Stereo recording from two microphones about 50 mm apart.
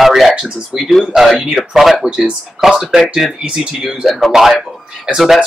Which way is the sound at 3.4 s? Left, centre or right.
Centre.